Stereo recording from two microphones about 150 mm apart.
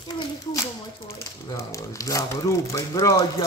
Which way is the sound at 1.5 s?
20° left (ahead or behind).